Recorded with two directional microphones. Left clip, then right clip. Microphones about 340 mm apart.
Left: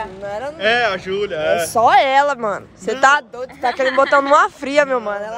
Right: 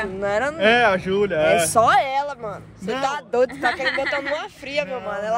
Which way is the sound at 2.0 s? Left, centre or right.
Left.